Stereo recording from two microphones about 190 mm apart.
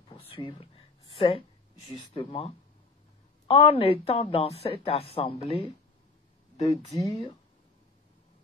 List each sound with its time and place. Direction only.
0.1 s a sound: 25° left (ahead or behind)
1.9 s a woman's voice: 30° left (ahead or behind)
6.7 s speech: 15° left (ahead or behind)